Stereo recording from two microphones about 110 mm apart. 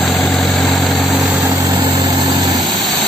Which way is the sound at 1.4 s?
30° right (ahead or behind).